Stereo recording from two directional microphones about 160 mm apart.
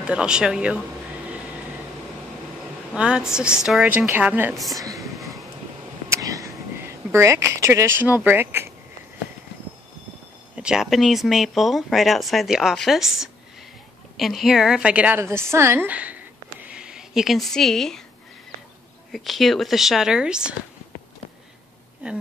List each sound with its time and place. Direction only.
0.0 s a woman's voice: 5° right (ahead or behind)
2.9 s a woman's voice: 5° right (ahead or behind)
4.7 s a woman's voice: 20° right (ahead or behind)
5.0 s a sound: centre (ahead or behind)
6.0 s a sound: 20° right (ahead or behind)
6.8 s speech: 15° right (ahead or behind)
10.5 s a woman's voice: 5° right (ahead or behind)
16.6 s a sound: 5° right (ahead or behind)
19.1 s speech: centre (ahead or behind)